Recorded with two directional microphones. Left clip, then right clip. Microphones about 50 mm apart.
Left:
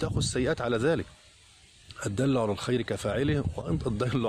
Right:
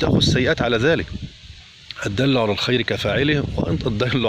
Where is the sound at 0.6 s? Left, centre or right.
Left.